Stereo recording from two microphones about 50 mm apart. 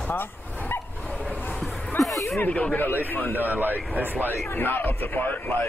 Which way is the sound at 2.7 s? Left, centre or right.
Left.